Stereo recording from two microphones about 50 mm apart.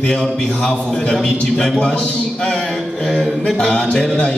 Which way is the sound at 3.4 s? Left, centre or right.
Centre.